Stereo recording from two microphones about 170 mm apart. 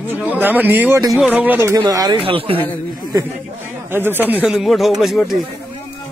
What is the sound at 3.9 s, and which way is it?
Speech, 10° right (ahead or behind).